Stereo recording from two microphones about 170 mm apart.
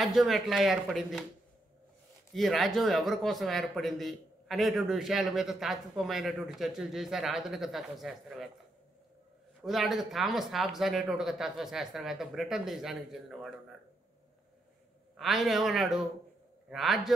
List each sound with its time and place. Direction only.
0.0 s a man's voice: centre (ahead or behind)
2.3 s a man's voice: centre (ahead or behind)
9.6 s a man's voice: centre (ahead or behind)
15.1 s a man's voice: centre (ahead or behind)